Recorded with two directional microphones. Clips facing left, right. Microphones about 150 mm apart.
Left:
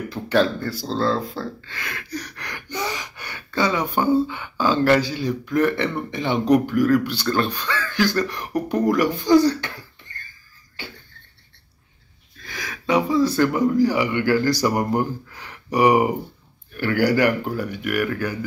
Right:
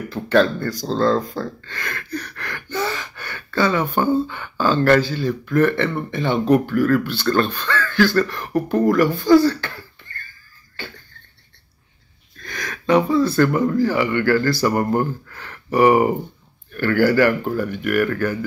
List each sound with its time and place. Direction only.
0.1 s speech: 10° left (ahead or behind)
12.4 s speech: 5° left (ahead or behind)